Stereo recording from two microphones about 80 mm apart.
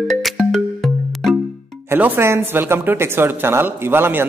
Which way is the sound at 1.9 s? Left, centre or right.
Right.